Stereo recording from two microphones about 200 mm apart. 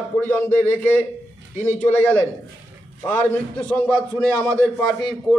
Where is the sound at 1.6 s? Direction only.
10° left (ahead or behind).